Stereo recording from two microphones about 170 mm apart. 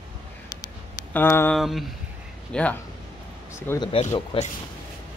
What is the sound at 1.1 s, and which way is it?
Speech, 15° left (ahead or behind).